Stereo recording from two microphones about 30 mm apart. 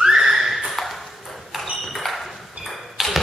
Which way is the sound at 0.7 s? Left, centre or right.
Centre.